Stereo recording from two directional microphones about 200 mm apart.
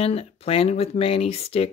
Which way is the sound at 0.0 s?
30° left (ahead or behind).